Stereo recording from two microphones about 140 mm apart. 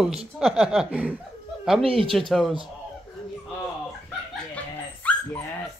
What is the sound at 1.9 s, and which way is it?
Speech, 40° right (ahead or behind).